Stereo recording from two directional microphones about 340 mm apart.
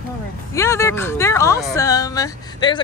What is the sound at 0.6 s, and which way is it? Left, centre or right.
Speech, centre.